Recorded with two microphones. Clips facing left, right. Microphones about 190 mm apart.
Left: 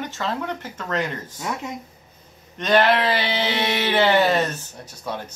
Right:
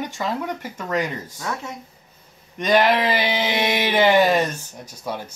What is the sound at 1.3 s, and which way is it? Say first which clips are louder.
Speech: left 3 dB; 15° left (ahead or behind).